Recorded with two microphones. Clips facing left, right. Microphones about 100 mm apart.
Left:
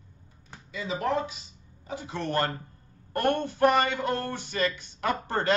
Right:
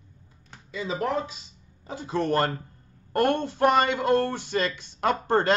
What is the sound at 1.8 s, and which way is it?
A man's voice, 35° right (ahead or behind).